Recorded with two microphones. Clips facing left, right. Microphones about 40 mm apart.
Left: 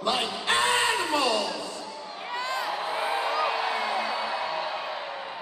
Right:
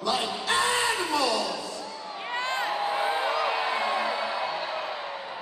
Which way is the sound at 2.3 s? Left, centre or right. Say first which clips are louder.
Right 1 dB; right.